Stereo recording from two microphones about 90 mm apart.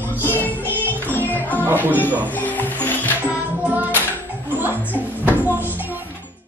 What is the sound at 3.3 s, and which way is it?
Music, 15° right (ahead or behind).